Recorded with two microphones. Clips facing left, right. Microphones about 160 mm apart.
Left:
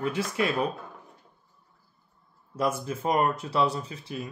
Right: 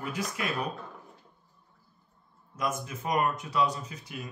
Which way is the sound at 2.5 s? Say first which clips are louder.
Left 5 dB; 30° left (ahead or behind).